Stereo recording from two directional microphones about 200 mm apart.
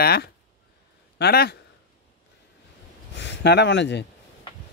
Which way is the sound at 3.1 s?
60° left (ahead or behind).